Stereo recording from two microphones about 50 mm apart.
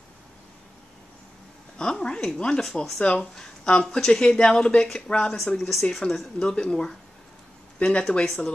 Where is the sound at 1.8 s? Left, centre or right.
Centre.